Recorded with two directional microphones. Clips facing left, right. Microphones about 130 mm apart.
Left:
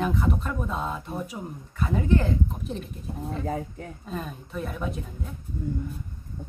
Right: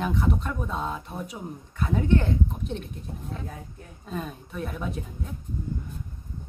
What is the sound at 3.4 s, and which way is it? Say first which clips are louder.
Speech: left 9 dB; 90° left.